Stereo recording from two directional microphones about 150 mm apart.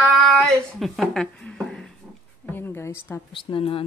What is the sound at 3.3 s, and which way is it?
Speech, 35° left (ahead or behind).